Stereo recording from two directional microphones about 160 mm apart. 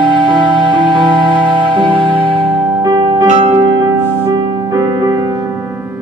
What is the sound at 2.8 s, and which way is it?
Music, 30° right (ahead or behind).